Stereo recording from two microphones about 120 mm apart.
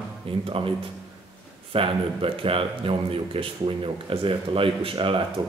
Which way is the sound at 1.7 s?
50° right (ahead or behind).